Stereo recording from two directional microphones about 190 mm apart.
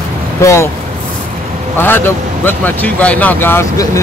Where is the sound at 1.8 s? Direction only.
10° left (ahead or behind).